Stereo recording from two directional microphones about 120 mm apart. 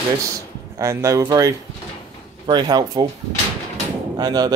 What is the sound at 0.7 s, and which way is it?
Speech, 25° right (ahead or behind).